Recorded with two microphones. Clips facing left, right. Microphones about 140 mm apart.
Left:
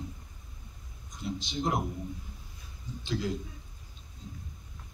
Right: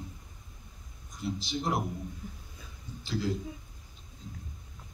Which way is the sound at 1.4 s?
20° left (ahead or behind).